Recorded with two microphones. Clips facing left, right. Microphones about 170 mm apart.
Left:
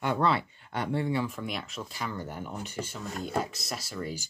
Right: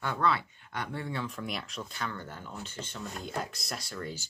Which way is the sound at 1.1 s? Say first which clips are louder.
Left 5 dB; 5° left (ahead or behind).